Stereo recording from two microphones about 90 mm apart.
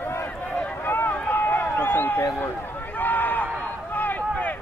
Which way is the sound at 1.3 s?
25° left (ahead or behind).